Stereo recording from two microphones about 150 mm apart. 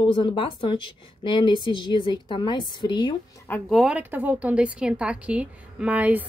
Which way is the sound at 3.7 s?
10° right (ahead or behind).